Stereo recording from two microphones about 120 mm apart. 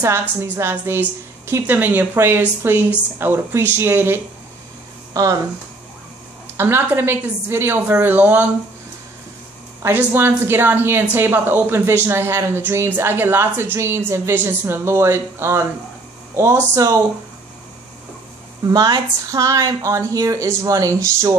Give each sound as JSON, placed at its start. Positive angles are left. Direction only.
{"t": 0.0, "sound": "a woman's voice", "side_deg": -20}
{"t": 6.5, "sound": "a woman's voice", "side_deg": -20}
{"t": 9.8, "sound": "speech", "side_deg": -20}
{"t": 18.7, "sound": "speech", "side_deg": -35}